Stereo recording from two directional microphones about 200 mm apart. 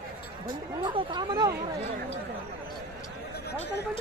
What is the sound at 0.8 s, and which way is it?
Speech, 25° right (ahead or behind).